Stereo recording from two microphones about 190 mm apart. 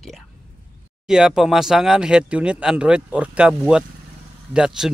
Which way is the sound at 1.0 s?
Centre (ahead or behind).